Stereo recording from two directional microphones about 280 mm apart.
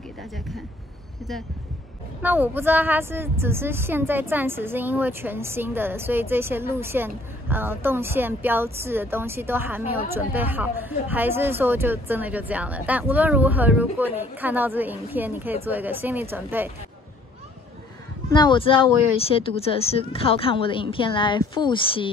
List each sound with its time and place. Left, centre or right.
2.2 s a woman's voice: centre
18.3 s speech: centre